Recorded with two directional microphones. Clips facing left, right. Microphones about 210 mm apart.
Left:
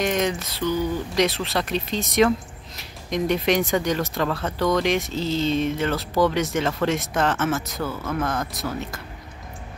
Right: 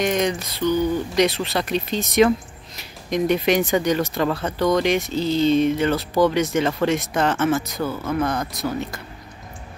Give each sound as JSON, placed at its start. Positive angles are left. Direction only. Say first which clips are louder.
{"t": 0.0, "sound": "speech", "louder": "right 2 dB", "side_deg": 0}